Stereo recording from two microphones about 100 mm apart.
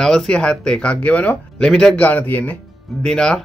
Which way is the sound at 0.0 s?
5° left (ahead or behind).